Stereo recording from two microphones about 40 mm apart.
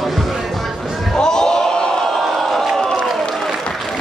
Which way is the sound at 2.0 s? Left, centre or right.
Centre.